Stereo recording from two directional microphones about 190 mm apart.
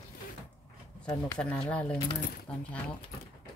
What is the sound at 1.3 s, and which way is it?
Speech, 5° left (ahead or behind).